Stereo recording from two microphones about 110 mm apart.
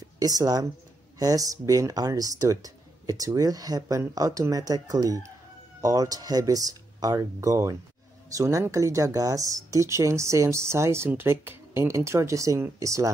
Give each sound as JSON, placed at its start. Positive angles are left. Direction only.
{"t": 0.2, "sound": "speech", "side_deg": -35}